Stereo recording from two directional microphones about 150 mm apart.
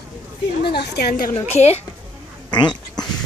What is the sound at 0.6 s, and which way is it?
Speech, 90° left.